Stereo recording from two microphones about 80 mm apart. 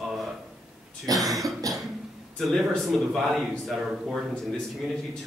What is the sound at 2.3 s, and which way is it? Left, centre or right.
A man's voice, centre.